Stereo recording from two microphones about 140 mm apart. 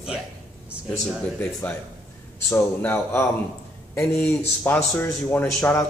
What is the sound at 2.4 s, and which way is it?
A man's voice, 15° left (ahead or behind).